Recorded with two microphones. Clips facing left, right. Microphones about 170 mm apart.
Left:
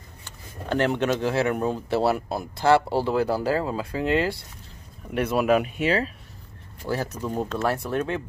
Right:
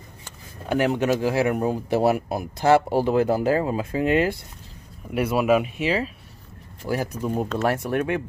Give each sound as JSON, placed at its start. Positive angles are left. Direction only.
{"t": 0.7, "sound": "speech", "side_deg": -10}
{"t": 6.9, "sound": "speech", "side_deg": -15}